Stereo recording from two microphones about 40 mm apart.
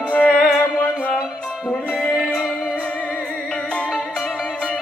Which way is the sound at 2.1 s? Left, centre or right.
Centre.